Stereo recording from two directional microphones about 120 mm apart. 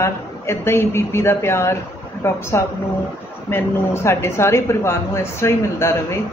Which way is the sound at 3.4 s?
20° left (ahead or behind).